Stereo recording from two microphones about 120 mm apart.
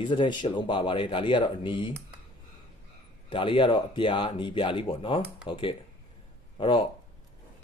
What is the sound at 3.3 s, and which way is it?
Speech, 45° left (ahead or behind).